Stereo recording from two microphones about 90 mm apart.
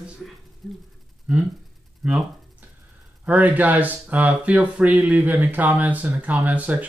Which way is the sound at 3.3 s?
20° right (ahead or behind).